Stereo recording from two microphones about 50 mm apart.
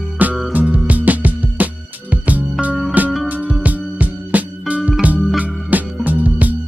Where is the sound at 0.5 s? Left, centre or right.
Right.